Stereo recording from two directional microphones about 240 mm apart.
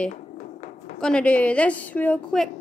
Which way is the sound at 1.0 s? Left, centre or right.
Centre.